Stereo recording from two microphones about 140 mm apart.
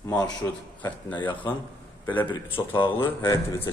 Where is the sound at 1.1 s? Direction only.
35° left (ahead or behind).